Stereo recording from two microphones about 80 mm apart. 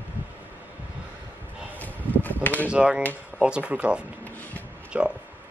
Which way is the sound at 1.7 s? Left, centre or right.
Left.